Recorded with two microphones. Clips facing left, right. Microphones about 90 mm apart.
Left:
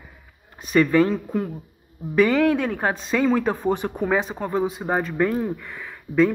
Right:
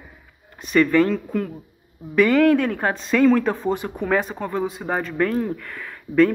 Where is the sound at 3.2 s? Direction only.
10° left (ahead or behind).